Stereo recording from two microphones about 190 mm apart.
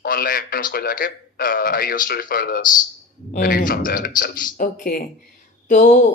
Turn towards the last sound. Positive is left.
turn(degrees=45)  # may be behind; listen again after turning